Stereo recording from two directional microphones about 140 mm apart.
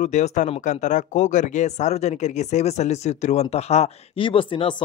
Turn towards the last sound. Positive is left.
turn(degrees=40)  # may be behind; listen again after turning